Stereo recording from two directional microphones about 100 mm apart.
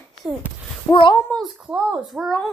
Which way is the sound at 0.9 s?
55° left (ahead or behind).